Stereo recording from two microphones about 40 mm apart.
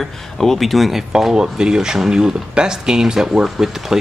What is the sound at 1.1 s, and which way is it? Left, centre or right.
Speech, centre.